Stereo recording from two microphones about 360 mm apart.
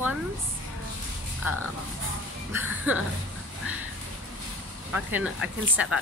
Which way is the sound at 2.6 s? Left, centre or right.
Centre.